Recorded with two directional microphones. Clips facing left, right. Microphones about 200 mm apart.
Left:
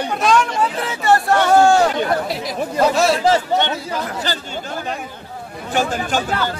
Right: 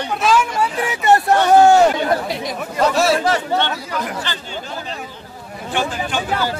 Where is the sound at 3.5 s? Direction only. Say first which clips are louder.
Left 1 dB; 15° left (ahead or behind).